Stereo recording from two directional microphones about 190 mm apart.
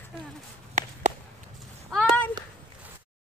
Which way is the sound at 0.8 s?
40° right (ahead or behind).